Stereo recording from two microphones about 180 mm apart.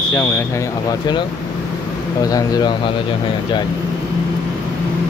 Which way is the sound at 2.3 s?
20° left (ahead or behind).